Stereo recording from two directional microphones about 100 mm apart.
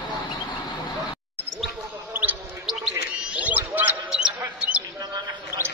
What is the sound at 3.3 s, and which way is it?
Basketball bounce, 15° right (ahead or behind).